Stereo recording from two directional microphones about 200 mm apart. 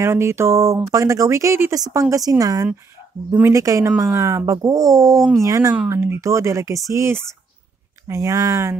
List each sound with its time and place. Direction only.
0.0 s speech: 15° right (ahead or behind)